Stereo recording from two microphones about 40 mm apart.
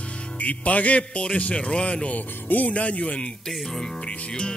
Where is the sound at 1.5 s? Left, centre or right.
Left.